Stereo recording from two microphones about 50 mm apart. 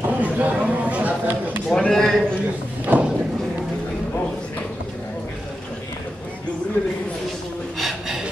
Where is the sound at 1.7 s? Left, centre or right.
Centre.